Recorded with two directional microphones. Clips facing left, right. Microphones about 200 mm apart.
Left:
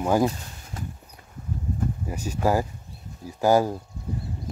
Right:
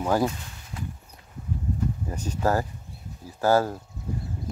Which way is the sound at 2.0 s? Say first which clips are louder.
Left 2 dB; 10° left (ahead or behind).